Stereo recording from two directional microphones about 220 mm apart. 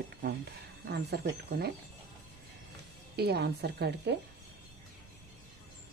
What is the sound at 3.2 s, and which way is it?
Speech, 45° right (ahead or behind).